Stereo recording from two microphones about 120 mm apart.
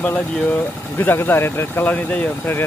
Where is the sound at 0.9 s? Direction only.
15° left (ahead or behind).